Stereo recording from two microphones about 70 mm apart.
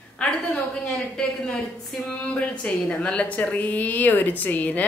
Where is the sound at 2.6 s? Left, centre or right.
Centre.